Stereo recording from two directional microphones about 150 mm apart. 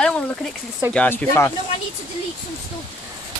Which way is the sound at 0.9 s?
15° left (ahead or behind).